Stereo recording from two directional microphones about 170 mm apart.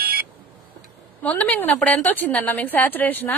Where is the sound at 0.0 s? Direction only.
65° right (ahead or behind).